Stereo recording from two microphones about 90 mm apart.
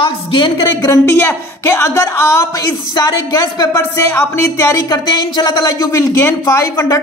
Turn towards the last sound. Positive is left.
turn(degrees=35)  # may be behind; listen again after turning